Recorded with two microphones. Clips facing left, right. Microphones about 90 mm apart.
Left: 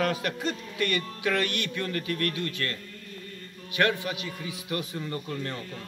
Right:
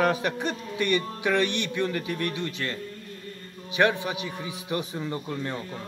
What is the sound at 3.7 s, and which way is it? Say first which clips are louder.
A man's voice: right 3 dB; 20° right (ahead or behind).